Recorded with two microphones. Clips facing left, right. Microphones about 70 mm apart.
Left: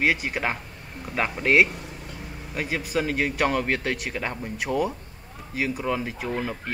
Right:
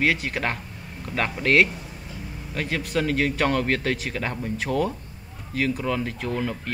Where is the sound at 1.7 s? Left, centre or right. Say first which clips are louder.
Even; left.